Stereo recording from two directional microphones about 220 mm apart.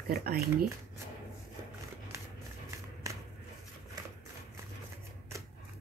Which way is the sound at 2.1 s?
10° right (ahead or behind).